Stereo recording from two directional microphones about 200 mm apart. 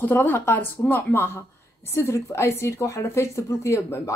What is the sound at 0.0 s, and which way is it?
A woman's voice, 10° left (ahead or behind).